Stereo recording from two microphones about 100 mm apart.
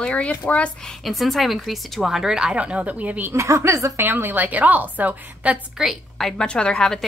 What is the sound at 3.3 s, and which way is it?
Speech, 25° right (ahead or behind).